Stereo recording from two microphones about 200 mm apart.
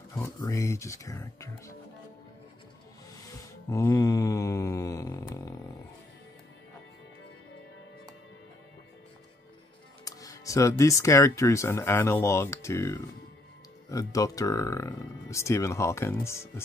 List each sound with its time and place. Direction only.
0.1 s speech: 15° left (ahead or behind)
3.7 s speech: 15° left (ahead or behind)
10.0 s speech: 15° left (ahead or behind)